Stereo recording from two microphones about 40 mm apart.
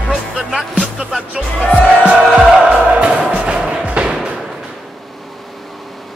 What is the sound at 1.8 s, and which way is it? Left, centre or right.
Music, right.